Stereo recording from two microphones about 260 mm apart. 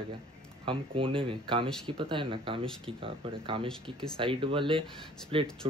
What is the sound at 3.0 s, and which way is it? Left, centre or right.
Speech, centre.